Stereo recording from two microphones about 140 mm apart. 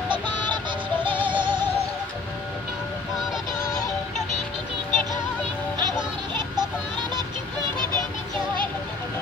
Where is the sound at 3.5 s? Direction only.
20° left (ahead or behind).